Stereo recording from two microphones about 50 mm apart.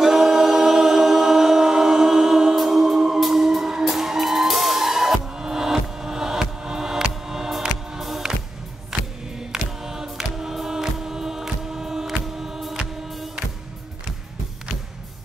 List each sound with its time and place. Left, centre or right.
0.0 s choir: centre
8.0 s music: centre
8.9 s music: centre
9.5 s choir: centre
12.4 s music: centre